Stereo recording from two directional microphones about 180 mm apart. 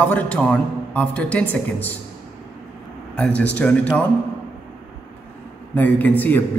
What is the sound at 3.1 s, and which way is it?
Speech, 5° left (ahead or behind).